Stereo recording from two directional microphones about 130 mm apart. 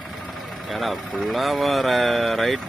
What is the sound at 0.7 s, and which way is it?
Speech, centre (ahead or behind).